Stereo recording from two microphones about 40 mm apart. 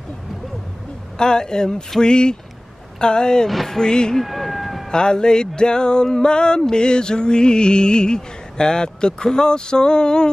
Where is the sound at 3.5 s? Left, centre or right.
Centre.